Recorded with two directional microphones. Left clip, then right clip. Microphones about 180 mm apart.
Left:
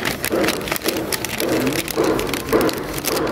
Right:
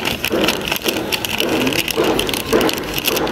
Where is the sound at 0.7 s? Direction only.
20° left (ahead or behind).